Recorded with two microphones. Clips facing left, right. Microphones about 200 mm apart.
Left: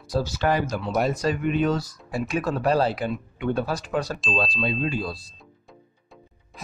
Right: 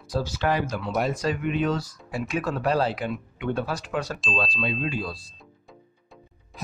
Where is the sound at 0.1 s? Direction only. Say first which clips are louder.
Left 2 dB; 40° left (ahead or behind).